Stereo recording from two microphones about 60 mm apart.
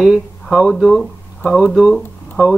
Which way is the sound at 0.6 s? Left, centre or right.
Centre.